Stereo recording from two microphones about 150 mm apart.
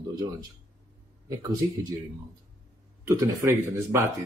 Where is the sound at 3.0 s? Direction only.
20° right (ahead or behind).